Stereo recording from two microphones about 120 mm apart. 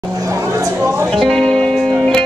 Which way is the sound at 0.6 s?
25° right (ahead or behind).